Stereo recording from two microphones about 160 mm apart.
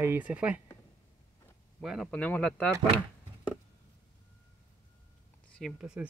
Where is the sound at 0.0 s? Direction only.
10° right (ahead or behind).